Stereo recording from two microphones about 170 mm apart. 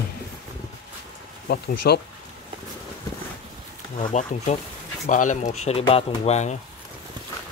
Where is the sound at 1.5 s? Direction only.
70° left (ahead or behind).